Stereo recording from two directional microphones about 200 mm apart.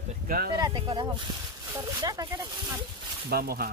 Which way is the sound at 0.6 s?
20° right (ahead or behind).